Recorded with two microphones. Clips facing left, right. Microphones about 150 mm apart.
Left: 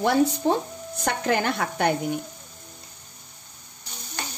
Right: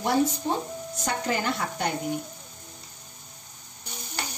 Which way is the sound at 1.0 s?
65° left (ahead or behind).